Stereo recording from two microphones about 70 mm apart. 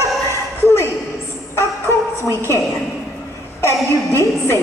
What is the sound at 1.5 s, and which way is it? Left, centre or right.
Music, left.